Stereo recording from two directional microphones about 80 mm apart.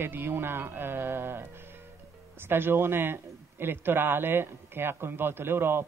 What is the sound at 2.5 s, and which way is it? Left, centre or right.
A man's voice, right.